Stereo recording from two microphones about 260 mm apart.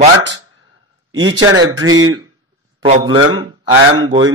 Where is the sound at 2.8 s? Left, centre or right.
Centre.